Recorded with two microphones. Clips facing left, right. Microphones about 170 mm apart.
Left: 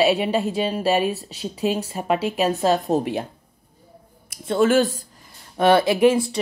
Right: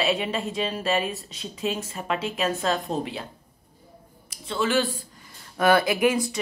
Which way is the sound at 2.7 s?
40° left (ahead or behind).